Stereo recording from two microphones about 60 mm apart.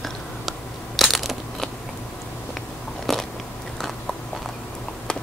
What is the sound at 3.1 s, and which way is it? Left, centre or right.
Biting, centre.